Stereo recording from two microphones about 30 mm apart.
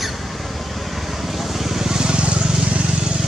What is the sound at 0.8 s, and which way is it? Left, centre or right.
Vehicle, centre.